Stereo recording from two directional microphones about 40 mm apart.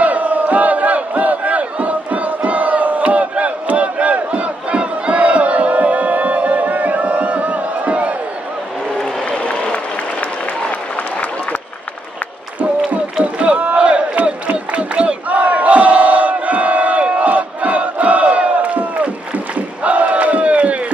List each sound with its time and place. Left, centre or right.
0.0 s battle cry: right
9.4 s a sound: left
12.9 s battle cry: right